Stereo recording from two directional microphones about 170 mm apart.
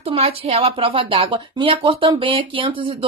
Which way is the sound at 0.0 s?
35° right (ahead or behind).